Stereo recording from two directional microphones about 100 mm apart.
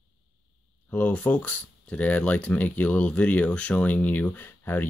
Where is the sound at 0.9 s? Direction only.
15° left (ahead or behind).